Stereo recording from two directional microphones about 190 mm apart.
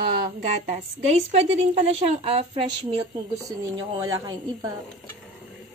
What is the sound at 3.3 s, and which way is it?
A woman's voice, 15° right (ahead or behind).